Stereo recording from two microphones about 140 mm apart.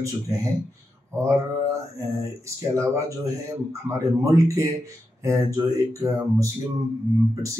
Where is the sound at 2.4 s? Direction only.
20° right (ahead or behind).